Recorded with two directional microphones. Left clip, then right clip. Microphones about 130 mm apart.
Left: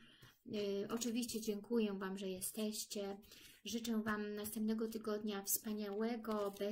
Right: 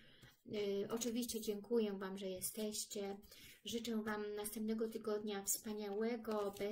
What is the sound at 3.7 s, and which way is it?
A woman's voice, 35° left (ahead or behind).